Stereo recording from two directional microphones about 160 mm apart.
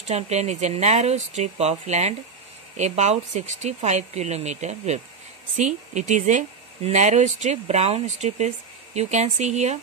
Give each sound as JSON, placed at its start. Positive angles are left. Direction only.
{"t": 0.1, "sound": "speech", "side_deg": -45}